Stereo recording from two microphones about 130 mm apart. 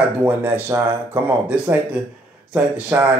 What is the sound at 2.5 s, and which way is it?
Speech, 10° right (ahead or behind).